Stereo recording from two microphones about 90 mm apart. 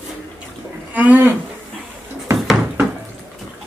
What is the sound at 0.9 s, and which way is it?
Speech, 20° right (ahead or behind).